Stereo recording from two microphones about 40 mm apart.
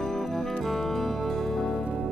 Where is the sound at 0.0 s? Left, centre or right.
Centre.